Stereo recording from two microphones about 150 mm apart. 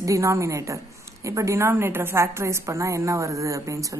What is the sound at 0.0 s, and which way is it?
A woman's voice, 20° right (ahead or behind).